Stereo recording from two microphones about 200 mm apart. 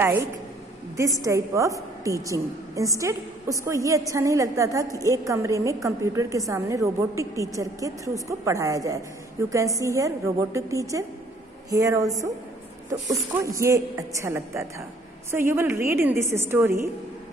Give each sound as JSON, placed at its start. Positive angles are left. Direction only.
{"t": 0.0, "sound": "a woman's voice", "side_deg": -10}
{"t": 13.4, "sound": "a woman's voice", "side_deg": -15}